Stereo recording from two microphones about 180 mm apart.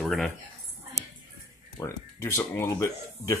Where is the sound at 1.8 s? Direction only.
15° left (ahead or behind).